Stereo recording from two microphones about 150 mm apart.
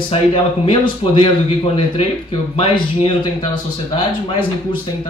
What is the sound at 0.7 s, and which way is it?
Speech, 35° left (ahead or behind).